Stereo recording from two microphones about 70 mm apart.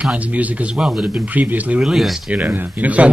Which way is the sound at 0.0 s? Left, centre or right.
Centre.